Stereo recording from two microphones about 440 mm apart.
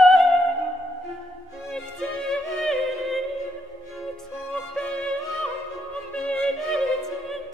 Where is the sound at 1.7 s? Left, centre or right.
Centre.